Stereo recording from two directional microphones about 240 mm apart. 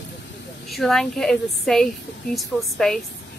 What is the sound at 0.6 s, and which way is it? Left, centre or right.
A woman's voice, centre.